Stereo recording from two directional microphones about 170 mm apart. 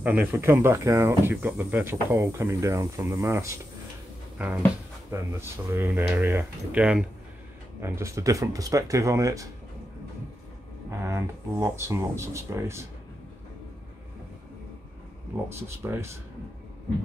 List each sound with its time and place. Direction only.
0.0 s speech: 10° right (ahead or behind)
10.9 s speech: 15° right (ahead or behind)
15.5 s speech: 15° right (ahead or behind)